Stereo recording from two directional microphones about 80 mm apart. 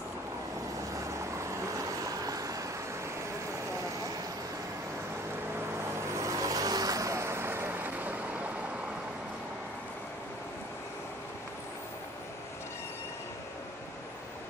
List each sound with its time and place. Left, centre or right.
1.7 s vehicle: right
6.1 s vehicle: right